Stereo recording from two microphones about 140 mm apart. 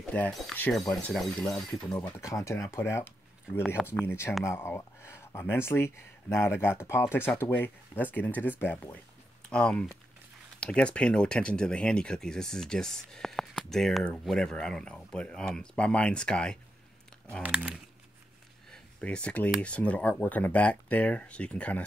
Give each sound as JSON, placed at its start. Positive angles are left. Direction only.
{"t": 0.1, "sound": "speech", "side_deg": 10}
{"t": 2.0, "sound": "speech", "side_deg": 15}
{"t": 17.4, "sound": "speech", "side_deg": -10}
{"t": 18.7, "sound": "speech", "side_deg": 5}